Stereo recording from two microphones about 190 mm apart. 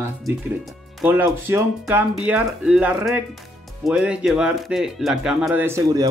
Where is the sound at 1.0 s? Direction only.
10° right (ahead or behind).